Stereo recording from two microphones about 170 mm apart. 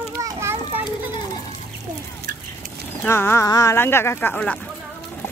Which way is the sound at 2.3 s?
55° right (ahead or behind).